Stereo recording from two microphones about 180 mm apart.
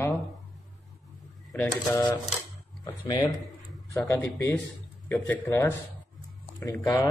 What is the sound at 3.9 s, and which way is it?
A man's voice, 15° left (ahead or behind).